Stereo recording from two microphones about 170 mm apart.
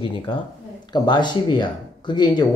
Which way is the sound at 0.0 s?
30° left (ahead or behind).